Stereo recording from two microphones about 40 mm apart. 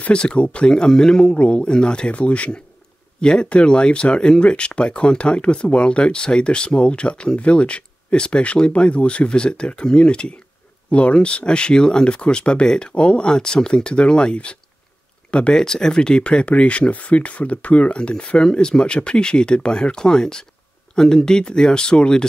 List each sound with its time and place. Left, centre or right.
0.1 s speech: left
1.3 s speech: left
3.2 s speech: left
15.6 s speech: centre